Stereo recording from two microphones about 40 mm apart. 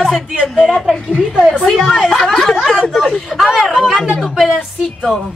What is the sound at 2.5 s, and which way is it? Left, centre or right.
Speech, centre.